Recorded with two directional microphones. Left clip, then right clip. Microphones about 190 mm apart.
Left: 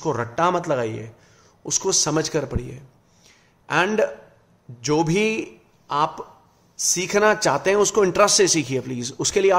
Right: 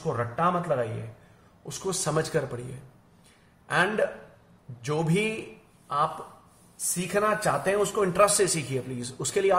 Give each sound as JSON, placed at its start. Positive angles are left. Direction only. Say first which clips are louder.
{"t": 0.1, "sound": "a man's voice", "louder": "left 5 dB", "side_deg": 50}
{"t": 3.6, "sound": "a man's voice", "louder": "left 5 dB", "side_deg": 35}
{"t": 6.8, "sound": "a man's voice", "louder": "left 8 dB", "side_deg": 45}